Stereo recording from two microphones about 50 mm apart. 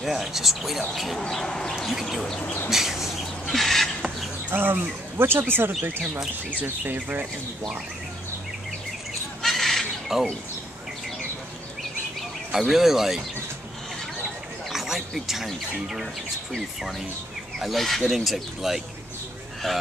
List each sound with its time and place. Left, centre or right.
0.0 s speech: centre
1.3 s bird: centre
1.8 s speech: centre
2.7 s bird: centre
3.5 s chicken: centre
4.5 s speech: right
6.6 s speech: right
9.4 s squawk: centre
10.1 s speech: centre
12.4 s speech: centre
14.7 s a sound: centre
17.6 s speech: centre
19.6 s bird: centre